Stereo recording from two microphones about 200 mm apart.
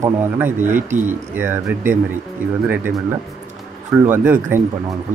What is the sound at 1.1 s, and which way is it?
Speech, 10° right (ahead or behind).